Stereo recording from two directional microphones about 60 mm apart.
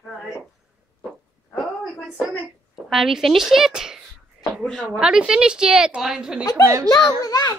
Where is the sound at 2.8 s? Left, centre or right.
Centre.